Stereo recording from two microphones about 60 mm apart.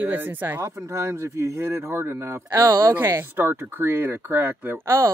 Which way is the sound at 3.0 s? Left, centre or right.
Right.